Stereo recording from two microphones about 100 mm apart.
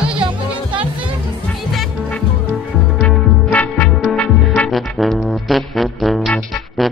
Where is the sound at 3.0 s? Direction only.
15° left (ahead or behind).